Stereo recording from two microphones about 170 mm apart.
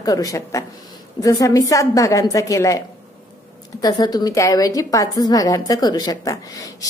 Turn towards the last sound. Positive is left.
turn(degrees=20)  # may be behind; listen again after turning